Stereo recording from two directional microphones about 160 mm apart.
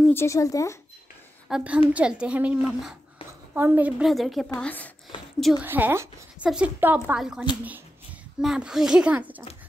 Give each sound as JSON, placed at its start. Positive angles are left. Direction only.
{"t": 0.1, "sound": "speech", "side_deg": 15}
{"t": 1.5, "sound": "a woman's voice", "side_deg": -10}
{"t": 5.4, "sound": "a woman's voice", "side_deg": 0}
{"t": 5.7, "sound": "a woman's voice", "side_deg": -15}